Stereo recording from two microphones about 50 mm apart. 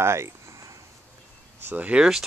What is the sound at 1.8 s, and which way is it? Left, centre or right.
Speech, right.